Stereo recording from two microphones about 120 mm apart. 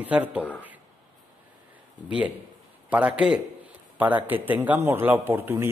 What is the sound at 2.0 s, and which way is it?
A man's voice, 10° right (ahead or behind).